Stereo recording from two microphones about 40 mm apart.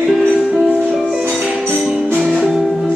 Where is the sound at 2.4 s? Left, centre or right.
Centre.